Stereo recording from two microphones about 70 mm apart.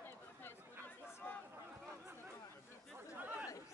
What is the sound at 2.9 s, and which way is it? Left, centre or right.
Chatter, right.